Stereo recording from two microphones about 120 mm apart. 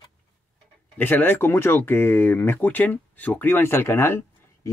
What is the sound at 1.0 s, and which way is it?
Speech, 15° left (ahead or behind).